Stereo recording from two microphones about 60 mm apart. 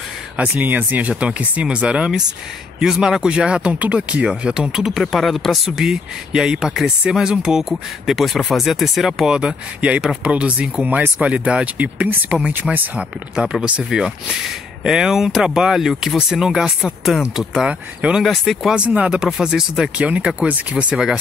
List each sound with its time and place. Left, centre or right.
0.4 s speech: right; by 4.9 s centre
5.1 s speech: centre
5.9 s speech: centre
8.1 s speech: centre
9.8 s speech: right; by 17.2 s centre
17.6 s speech: centre
18.2 s speech: centre
18.9 s speech: centre
20.0 s speech: right